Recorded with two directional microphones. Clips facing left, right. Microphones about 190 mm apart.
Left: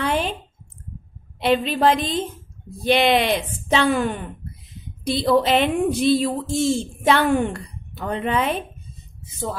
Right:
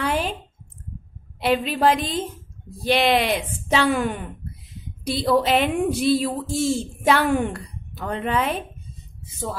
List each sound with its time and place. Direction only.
0.0 s a sound: 5° right (ahead or behind)
1.4 s a woman's voice: 5° right (ahead or behind)
2.8 s speech: 20° left (ahead or behind)
3.1 s a woman's voice: 5° right (ahead or behind)